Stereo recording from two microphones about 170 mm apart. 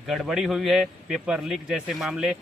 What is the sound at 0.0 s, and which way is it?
A man's voice, centre (ahead or behind).